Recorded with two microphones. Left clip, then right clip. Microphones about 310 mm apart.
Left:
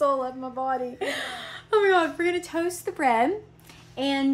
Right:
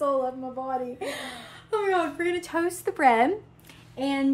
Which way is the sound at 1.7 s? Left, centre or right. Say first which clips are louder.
Left 4 dB; centre.